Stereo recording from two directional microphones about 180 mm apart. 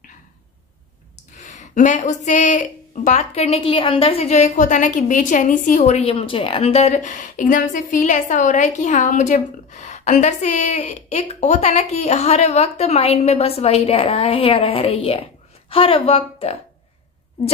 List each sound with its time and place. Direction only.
1.3 s speech: 40° left (ahead or behind)